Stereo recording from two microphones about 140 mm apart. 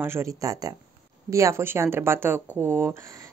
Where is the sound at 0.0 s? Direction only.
20° right (ahead or behind).